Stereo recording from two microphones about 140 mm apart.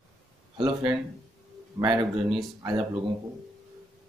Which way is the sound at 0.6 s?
Centre (ahead or behind).